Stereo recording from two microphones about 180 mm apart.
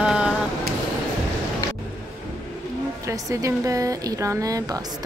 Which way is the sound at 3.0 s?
15° right (ahead or behind).